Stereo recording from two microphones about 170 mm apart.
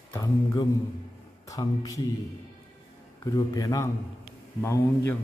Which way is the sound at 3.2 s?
20° left (ahead or behind).